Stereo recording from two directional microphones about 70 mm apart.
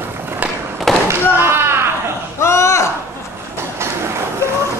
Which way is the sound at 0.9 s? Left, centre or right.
Centre.